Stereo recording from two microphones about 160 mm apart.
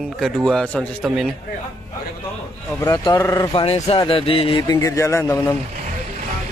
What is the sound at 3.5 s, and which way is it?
Speech, 35° left (ahead or behind).